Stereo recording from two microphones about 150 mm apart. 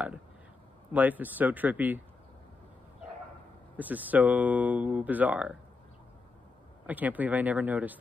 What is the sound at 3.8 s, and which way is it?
Speech, 10° right (ahead or behind).